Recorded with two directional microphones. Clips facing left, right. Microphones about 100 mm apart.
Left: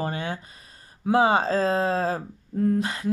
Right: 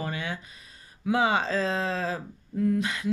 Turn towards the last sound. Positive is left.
turn(degrees=40)  # may be behind; listen again after turning